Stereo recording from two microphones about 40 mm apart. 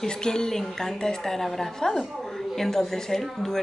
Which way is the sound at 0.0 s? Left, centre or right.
Centre.